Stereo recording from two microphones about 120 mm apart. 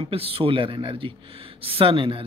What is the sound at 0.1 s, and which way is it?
Speech, 50° right (ahead or behind).